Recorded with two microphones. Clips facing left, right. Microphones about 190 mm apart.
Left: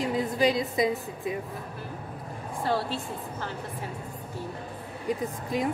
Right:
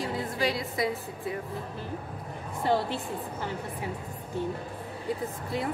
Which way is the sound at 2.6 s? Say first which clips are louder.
Right 2 dB; 20° right (ahead or behind).